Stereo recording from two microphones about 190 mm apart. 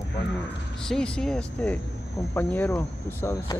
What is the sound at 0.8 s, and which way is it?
Speech, 5° left (ahead or behind).